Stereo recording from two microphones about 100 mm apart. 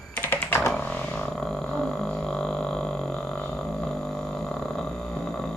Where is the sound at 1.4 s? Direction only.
5° left (ahead or behind).